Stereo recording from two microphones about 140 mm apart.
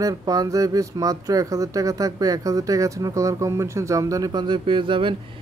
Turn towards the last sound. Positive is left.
turn(degrees=-35)  # may be behind; listen again after turning